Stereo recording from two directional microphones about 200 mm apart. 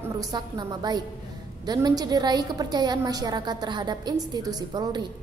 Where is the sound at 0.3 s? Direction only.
20° right (ahead or behind).